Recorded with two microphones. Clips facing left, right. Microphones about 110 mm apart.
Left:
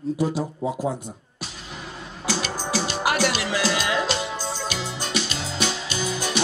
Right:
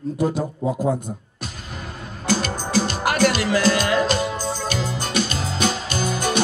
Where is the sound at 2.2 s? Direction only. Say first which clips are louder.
Right 4 dB; 45° right (ahead or behind).